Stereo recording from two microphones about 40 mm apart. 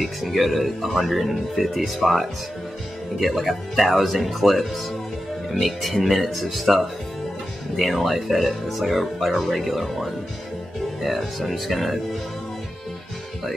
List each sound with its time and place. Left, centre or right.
0.3 s speech: centre
7.8 s speech: centre